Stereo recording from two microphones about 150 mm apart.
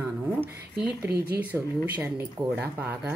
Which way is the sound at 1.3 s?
10° right (ahead or behind).